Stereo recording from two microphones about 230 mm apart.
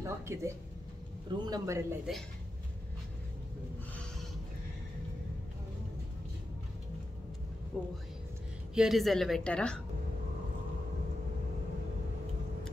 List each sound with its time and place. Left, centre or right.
0.0 s a man's voice: centre
7.7 s a woman's voice: centre